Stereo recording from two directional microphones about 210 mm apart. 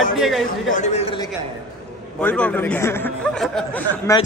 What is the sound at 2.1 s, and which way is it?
A man's voice, 5° left (ahead or behind).